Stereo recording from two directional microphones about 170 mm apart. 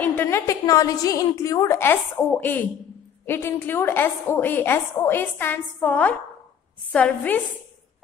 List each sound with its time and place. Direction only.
0.0 s a woman's voice: 10° left (ahead or behind)